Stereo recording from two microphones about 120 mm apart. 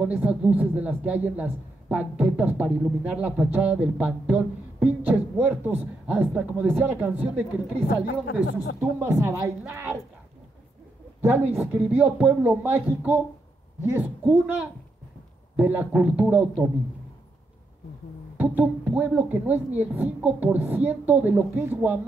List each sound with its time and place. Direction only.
0.0 s a woman's voice: 10° right (ahead or behind)
11.1 s speech: 15° right (ahead or behind)
18.4 s speech: 15° right (ahead or behind)